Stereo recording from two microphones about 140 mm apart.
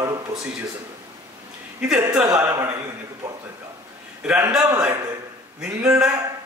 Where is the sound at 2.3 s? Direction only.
20° right (ahead or behind).